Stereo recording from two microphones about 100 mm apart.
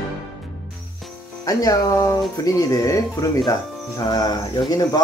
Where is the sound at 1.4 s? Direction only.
35° left (ahead or behind).